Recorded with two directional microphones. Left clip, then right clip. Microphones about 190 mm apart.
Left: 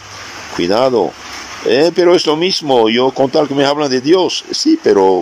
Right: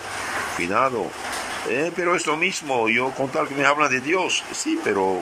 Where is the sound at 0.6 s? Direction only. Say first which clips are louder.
Left 11 dB; 35° left (ahead or behind).